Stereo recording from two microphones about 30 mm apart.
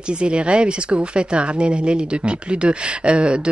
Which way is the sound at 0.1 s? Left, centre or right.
Right.